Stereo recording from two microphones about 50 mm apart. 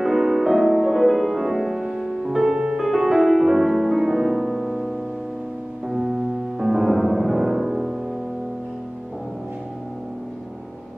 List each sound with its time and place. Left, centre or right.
0.0 s music: centre